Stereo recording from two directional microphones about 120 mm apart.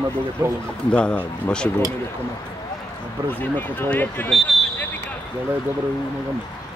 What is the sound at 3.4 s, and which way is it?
Speech, 15° left (ahead or behind).